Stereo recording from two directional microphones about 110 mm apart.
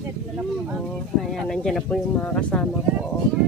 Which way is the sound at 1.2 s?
5° left (ahead or behind).